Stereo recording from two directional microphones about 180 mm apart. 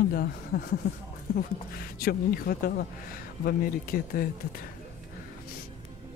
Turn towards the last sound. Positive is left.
turn(degrees=55)  # may be behind; listen again after turning